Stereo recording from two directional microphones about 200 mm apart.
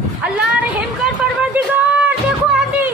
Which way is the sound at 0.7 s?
5° right (ahead or behind).